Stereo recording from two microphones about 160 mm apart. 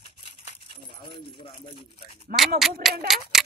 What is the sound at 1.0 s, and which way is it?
Coin, 30° left (ahead or behind).